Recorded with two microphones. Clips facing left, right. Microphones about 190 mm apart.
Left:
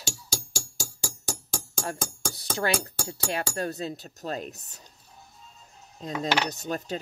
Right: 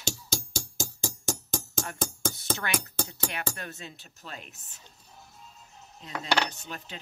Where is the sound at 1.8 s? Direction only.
30° left (ahead or behind).